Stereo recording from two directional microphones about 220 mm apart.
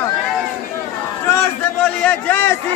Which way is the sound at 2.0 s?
10° left (ahead or behind).